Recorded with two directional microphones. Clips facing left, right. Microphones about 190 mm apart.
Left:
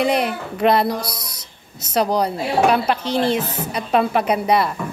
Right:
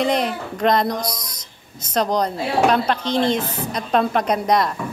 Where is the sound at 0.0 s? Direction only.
10° left (ahead or behind).